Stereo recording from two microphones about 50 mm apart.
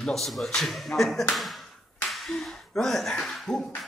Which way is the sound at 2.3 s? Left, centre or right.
Centre.